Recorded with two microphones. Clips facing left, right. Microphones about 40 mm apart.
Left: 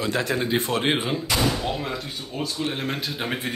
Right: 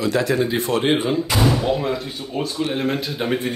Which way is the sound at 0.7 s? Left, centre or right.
Centre.